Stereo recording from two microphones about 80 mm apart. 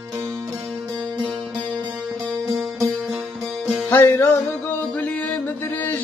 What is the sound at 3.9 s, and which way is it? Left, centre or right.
Music, left.